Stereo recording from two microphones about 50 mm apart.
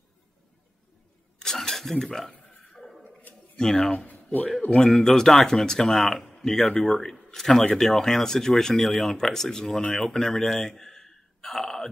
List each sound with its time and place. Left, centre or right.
1.4 s vehicle: centre
2.4 s burping: left
3.5 s speech: centre
4.1 s a sound: left
4.7 s a man's voice: centre